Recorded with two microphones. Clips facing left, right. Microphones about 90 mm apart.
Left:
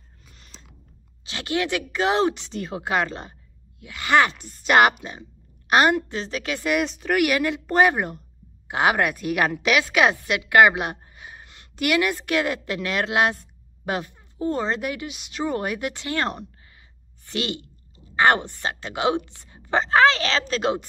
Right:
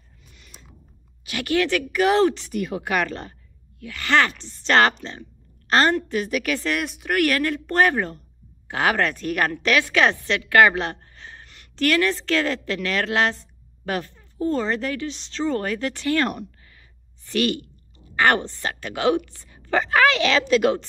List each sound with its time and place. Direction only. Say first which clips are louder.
0.3 s a sound: even; 35° left (ahead or behind)
1.2 s a woman's voice: right 4 dB; 25° left (ahead or behind)
4.5 s a woman's voice: left 1 dB; 5° left (ahead or behind)
6.1 s a woman's voice: right 5 dB; 30° left (ahead or behind)
6.9 s a woman's voice: left 2 dB; 5° right (ahead or behind)
7.2 s a woman's voice: right 1 dB; 10° left (ahead or behind)
7.9 s a woman's voice: right 1 dB; 15° left (ahead or behind); by 20.7 s 35° left (ahead or behind)